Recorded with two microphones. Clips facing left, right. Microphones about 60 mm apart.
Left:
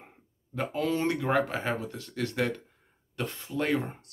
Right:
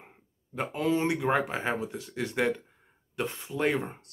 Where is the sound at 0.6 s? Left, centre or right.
Centre.